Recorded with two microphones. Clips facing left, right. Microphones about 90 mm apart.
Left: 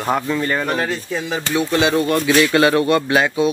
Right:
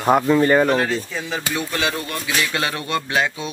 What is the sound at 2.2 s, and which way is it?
Speech, 50° left (ahead or behind).